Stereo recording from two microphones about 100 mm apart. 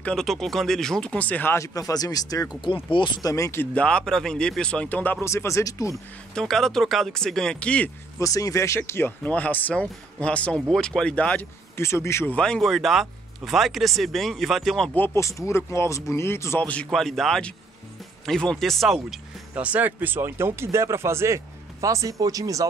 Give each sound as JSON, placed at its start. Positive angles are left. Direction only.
{"t": 0.0, "sound": "speech", "side_deg": 5}
{"t": 2.6, "sound": "speech", "side_deg": 55}
{"t": 3.2, "sound": "speech", "side_deg": 35}
{"t": 3.7, "sound": "speech", "side_deg": 10}
{"t": 5.2, "sound": "speech", "side_deg": 30}
{"t": 6.3, "sound": "speech", "side_deg": 5}
{"t": 8.2, "sound": "speech", "side_deg": 35}
{"t": 11.7, "sound": "speech", "side_deg": 25}
{"t": 12.4, "sound": "speech", "side_deg": 5}
{"t": 15.1, "sound": "speech", "side_deg": 30}
{"t": 16.9, "sound": "speech", "side_deg": 5}
{"t": 19.5, "sound": "speech", "side_deg": -15}